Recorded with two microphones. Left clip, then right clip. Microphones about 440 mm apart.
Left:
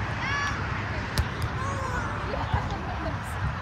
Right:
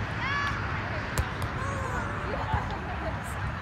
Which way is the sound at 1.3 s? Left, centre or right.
Centre.